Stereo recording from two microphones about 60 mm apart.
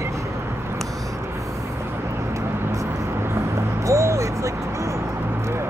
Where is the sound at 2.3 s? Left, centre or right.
Right.